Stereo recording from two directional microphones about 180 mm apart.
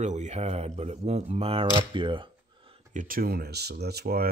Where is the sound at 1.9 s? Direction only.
25° right (ahead or behind).